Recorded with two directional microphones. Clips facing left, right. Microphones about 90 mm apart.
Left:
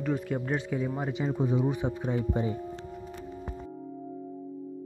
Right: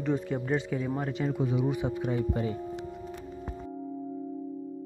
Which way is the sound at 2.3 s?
20° left (ahead or behind).